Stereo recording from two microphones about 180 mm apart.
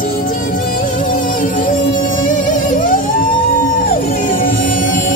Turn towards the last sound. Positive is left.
turn(degrees=50)  # may be behind; listen again after turning